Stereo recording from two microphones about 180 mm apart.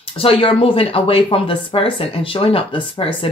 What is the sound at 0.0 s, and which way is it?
Speech, 30° left (ahead or behind).